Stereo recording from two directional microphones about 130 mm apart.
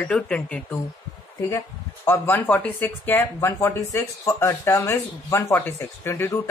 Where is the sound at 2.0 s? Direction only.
15° left (ahead or behind).